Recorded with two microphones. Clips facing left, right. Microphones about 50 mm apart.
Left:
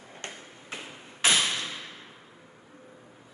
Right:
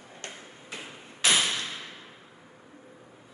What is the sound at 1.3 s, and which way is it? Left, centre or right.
Thump, centre.